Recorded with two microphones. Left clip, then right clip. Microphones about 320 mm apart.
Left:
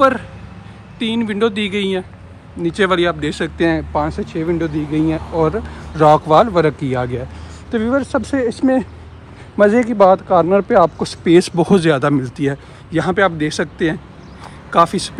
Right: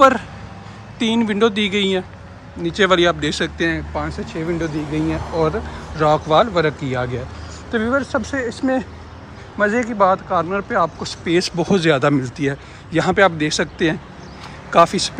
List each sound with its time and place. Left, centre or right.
0.9 s speech: centre
8.4 s speech: centre